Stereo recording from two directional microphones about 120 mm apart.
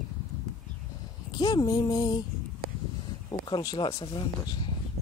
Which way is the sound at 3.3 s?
40° left (ahead or behind).